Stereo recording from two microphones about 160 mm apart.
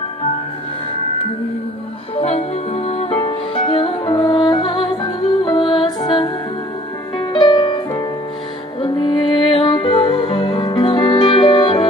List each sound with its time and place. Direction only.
2.1 s music: 40° left (ahead or behind)